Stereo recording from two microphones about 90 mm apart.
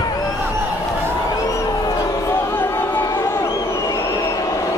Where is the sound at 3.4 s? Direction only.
35° left (ahead or behind).